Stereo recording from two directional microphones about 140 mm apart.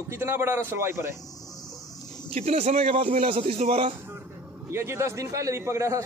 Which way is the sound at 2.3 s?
55° right (ahead or behind).